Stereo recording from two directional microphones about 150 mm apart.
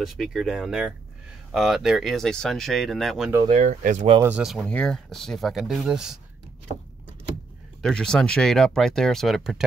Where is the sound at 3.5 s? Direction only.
55° right (ahead or behind).